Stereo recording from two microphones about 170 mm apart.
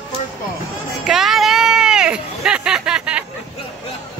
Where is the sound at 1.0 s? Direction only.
Centre (ahead or behind).